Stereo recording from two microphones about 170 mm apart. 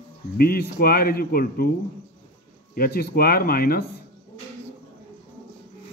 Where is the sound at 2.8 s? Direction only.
65° left (ahead or behind).